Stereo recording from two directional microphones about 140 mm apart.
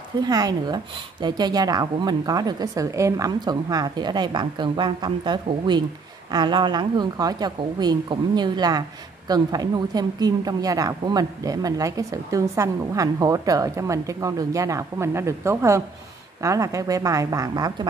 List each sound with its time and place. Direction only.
0.2 s a woman's voice: 25° right (ahead or behind)